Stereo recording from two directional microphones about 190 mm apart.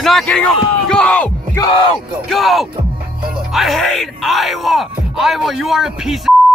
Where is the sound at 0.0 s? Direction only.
Centre (ahead or behind).